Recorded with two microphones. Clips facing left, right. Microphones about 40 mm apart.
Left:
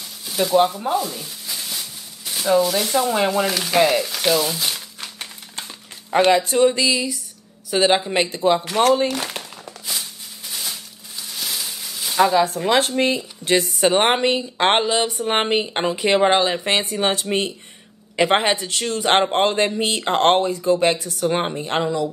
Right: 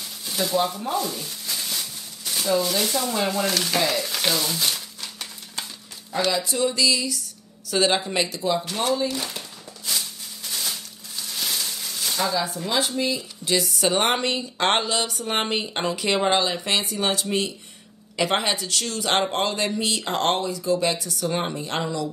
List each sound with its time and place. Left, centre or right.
0.7 s a sound: centre
2.6 s speech: centre
2.9 s speech: centre
3.7 s speech: centre
4.0 s speech: centre
5.0 s a sound: left
6.1 s speech: left
8.9 s speech: left
10.5 s a sound: centre
12.2 s speech: left; by 22.1 s centre